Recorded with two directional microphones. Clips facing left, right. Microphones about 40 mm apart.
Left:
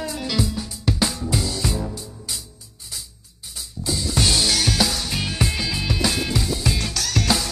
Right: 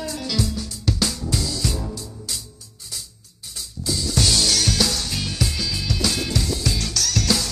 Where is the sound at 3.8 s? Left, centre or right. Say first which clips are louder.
Even; left.